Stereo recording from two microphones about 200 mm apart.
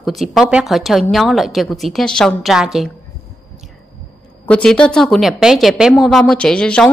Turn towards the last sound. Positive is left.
turn(degrees=5)  # may be behind; listen again after turning